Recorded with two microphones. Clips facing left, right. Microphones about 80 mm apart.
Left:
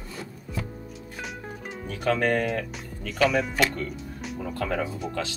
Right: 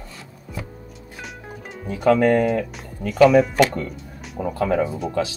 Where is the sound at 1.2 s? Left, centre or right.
Centre.